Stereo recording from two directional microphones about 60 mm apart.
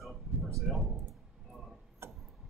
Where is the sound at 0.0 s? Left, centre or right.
Centre.